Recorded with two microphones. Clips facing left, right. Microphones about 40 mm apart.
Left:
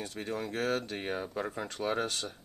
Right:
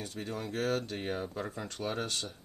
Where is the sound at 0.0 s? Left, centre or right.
Left.